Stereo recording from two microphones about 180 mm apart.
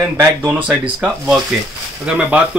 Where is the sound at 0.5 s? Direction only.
10° right (ahead or behind).